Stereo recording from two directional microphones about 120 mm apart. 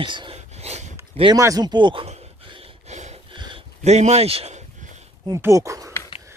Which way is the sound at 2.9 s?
70° right (ahead or behind).